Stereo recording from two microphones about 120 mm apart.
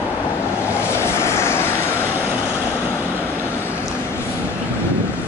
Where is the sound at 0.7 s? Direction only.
20° left (ahead or behind).